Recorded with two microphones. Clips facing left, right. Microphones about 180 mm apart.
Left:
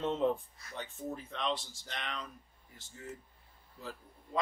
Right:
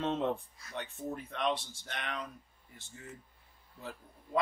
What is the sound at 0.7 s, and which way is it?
Speech, 60° right (ahead or behind).